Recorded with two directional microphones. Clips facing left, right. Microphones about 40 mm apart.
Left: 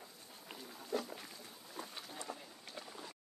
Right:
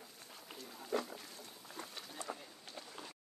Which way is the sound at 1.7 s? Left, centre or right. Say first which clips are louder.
Left 1 dB; right.